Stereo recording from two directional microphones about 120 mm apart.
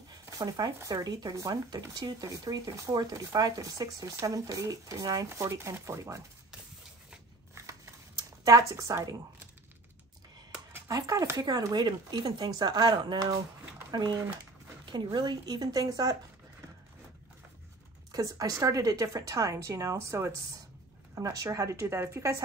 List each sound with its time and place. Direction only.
0.4 s speech: 30° right (ahead or behind)
7.5 s a sound: 25° right (ahead or behind)
10.9 s speech: 30° right (ahead or behind)
14.9 s speech: 40° right (ahead or behind)
18.1 s speech: 30° right (ahead or behind)